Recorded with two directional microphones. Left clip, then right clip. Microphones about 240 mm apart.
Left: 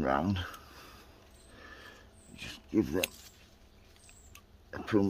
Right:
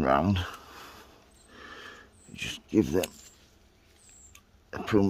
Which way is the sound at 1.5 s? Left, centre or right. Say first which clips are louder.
Right 6 dB; right.